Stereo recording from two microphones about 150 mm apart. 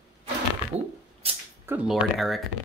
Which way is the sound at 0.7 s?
45° right (ahead or behind).